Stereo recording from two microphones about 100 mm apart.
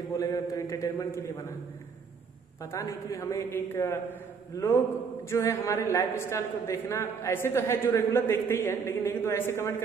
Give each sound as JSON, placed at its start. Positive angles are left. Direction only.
{"t": 0.2, "sound": "a man's voice", "side_deg": 35}
{"t": 2.6, "sound": "a woman's voice", "side_deg": 30}
{"t": 5.3, "sound": "a woman's voice", "side_deg": 30}